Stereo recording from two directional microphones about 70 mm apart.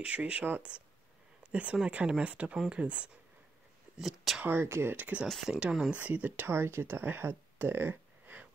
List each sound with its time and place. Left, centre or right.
0.0 s speech: centre
4.0 s speech: centre
4.5 s speech: right
4.9 s speech: right
5.5 s speech: centre
6.4 s speech: right